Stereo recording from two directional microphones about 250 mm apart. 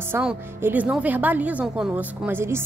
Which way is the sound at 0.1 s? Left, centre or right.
Centre.